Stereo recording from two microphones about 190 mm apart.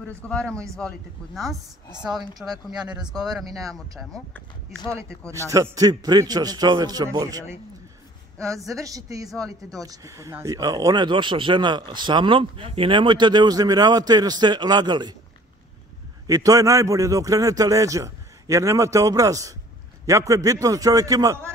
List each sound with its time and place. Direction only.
0.3 s a man's voice: 5° left (ahead or behind)
5.5 s a man's voice: 20° right (ahead or behind)
16.3 s a man's voice: 20° right (ahead or behind)